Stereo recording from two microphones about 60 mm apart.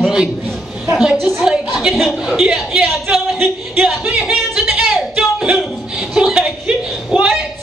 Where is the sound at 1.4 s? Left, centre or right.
Centre.